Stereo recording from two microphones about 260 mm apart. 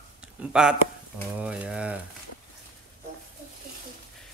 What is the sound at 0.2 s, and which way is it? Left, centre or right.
Speech, centre.